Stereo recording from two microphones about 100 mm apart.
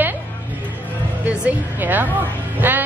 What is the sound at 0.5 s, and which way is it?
Music, 15° right (ahead or behind).